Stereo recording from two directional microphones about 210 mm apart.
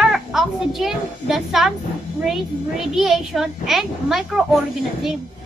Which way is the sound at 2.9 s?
Centre (ahead or behind).